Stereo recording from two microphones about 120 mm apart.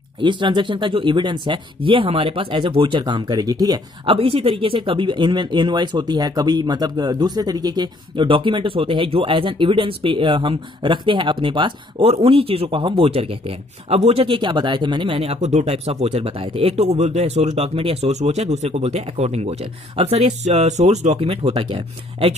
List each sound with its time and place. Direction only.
0.2 s speech: 40° right (ahead or behind)
4.0 s speech: 50° right (ahead or behind)